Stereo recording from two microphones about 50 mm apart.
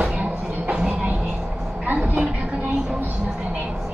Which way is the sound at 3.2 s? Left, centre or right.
Centre.